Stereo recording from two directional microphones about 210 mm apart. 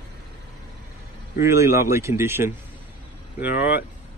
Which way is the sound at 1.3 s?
15° right (ahead or behind).